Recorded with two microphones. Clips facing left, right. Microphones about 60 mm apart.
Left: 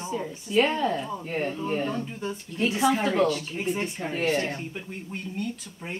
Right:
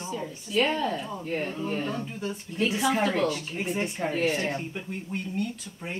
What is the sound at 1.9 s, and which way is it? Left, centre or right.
Speech, centre.